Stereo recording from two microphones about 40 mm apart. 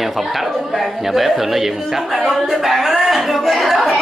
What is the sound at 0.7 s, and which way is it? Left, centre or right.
Speech, centre.